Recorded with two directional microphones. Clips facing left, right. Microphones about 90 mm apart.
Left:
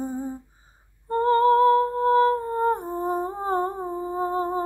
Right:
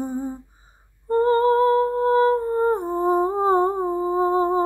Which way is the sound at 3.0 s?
5° right (ahead or behind).